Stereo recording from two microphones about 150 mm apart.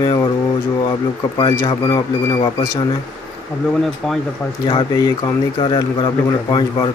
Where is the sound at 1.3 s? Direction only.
25° left (ahead or behind).